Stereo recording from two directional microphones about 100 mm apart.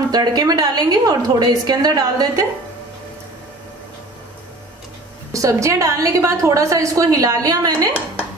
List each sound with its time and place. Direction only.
0.1 s a woman's voice: 40° right (ahead or behind)
5.3 s a woman's voice: 30° right (ahead or behind)